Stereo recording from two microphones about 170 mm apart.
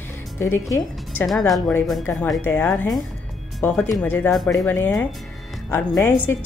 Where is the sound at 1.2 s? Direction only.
Centre (ahead or behind).